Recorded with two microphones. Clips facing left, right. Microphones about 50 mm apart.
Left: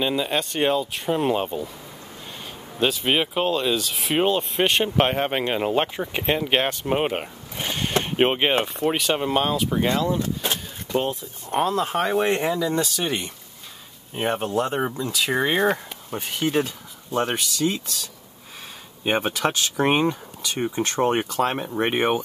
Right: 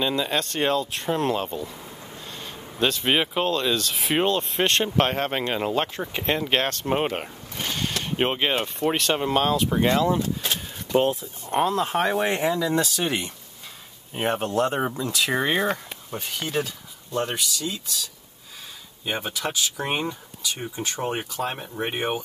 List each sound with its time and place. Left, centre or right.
0.0 s speech: centre
1.3 s speech: centre
8.7 s speech: centre
9.7 s speech: centre
15.6 s a sound: centre
16.2 s speech: left